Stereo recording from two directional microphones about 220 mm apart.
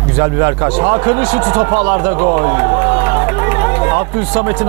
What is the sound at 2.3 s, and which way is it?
Run, 15° right (ahead or behind).